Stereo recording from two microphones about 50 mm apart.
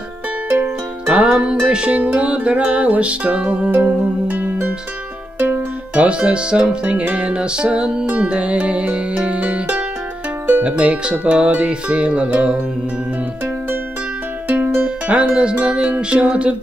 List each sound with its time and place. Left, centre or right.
1.0 s music: right
5.9 s music: right
14.5 s music: right
15.0 s music: right